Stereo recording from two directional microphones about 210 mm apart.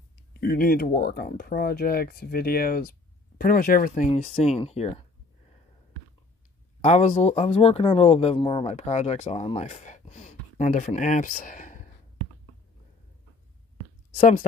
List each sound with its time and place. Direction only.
0.3 s speech: 45° left (ahead or behind); by 5.0 s 30° left (ahead or behind)
6.8 s speech: 35° left (ahead or behind)